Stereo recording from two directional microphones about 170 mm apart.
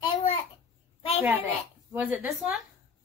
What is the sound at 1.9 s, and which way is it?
Speech, 10° right (ahead or behind).